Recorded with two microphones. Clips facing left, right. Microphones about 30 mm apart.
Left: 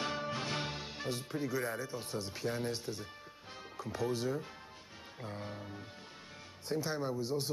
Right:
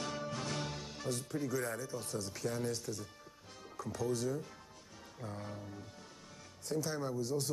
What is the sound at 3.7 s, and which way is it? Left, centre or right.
A man's voice, left.